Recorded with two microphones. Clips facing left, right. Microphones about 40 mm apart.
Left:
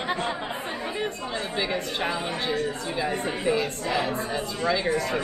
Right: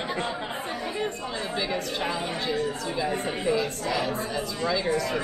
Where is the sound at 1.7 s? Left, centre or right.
Left.